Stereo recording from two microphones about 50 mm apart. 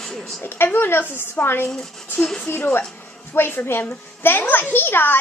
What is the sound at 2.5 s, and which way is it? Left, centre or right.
Speech, left.